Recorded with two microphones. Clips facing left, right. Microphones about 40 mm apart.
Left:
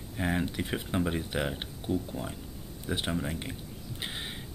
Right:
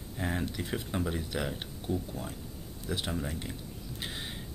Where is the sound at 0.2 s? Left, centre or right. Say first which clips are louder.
Left 3 dB; left.